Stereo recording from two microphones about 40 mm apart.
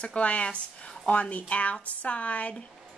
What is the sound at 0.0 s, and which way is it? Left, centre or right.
Speech, left.